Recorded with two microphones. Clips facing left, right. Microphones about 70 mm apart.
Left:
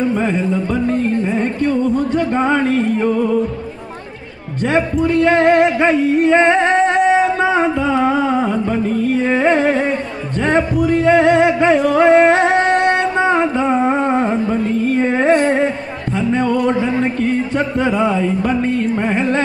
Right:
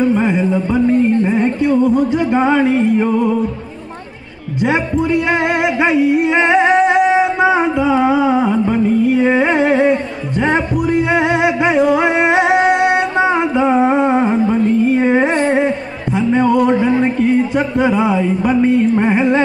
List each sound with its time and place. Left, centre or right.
0.1 s music: centre
4.6 s music: centre